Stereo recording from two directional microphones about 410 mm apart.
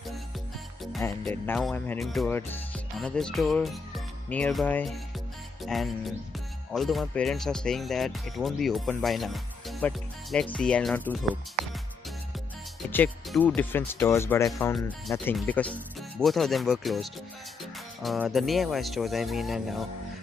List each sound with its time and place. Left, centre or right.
0.9 s speech: centre
12.9 s speech: centre